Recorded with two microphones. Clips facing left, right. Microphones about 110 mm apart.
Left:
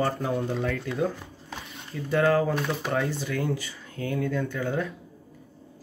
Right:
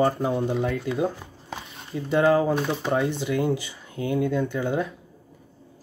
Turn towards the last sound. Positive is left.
turn(degrees=-25)  # may be behind; listen again after turning